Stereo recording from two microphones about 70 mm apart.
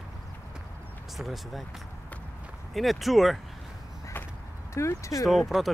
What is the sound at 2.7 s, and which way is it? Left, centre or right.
Speech, centre.